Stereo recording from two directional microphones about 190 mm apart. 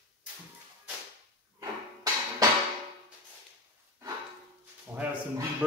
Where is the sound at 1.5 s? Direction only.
20° right (ahead or behind).